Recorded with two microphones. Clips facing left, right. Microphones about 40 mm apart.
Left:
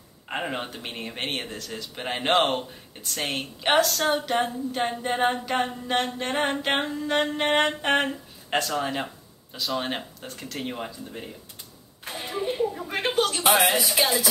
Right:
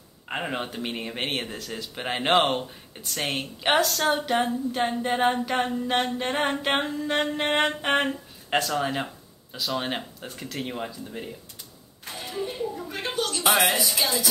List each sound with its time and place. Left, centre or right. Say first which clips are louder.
0.3 s speech: even; centre
12.1 s a sound: left 3 dB; left
13.8 s speech: left 2 dB; left